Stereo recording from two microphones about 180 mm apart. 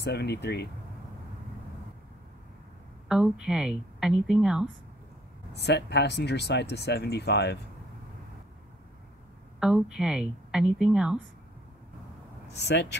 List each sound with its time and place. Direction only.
0.0 s speech: 65° left (ahead or behind)
3.1 s a woman's voice: 5° right (ahead or behind)
5.5 s speech: 70° left (ahead or behind)
9.6 s a woman's voice: 5° right (ahead or behind)
12.5 s speech: 70° left (ahead or behind)